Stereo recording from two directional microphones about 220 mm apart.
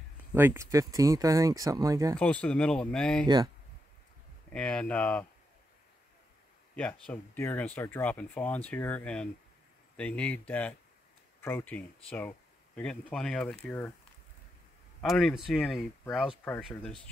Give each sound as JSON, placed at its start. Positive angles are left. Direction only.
{"t": 0.3, "sound": "speech", "side_deg": -10}
{"t": 2.1, "sound": "speech", "side_deg": 5}
{"t": 4.5, "sound": "speech", "side_deg": 5}
{"t": 6.7, "sound": "speech", "side_deg": 5}
{"t": 15.0, "sound": "speech", "side_deg": 0}